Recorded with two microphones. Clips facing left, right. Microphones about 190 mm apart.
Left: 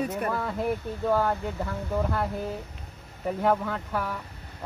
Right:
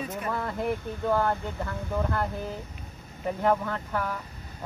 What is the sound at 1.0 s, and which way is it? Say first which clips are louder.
Speech: left 1 dB; 5° left (ahead or behind).